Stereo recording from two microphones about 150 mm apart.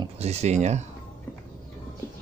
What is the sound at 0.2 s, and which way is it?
Speech, 45° right (ahead or behind).